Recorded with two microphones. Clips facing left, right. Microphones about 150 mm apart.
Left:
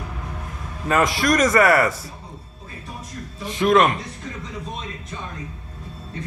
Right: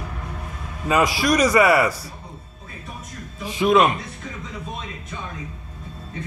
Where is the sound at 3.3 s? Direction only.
Centre (ahead or behind).